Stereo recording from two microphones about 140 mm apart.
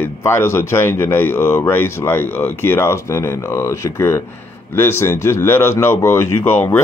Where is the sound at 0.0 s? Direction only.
15° left (ahead or behind).